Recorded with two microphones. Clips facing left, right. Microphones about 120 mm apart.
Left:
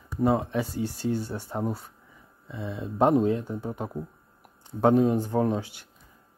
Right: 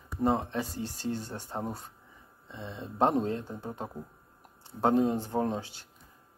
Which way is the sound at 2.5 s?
10° left (ahead or behind).